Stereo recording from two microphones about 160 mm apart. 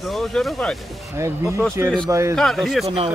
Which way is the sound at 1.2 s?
20° right (ahead or behind).